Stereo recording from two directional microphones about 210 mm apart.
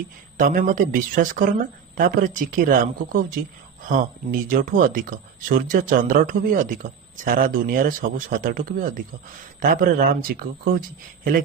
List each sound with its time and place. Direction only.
0.4 s speech: 40° right (ahead or behind)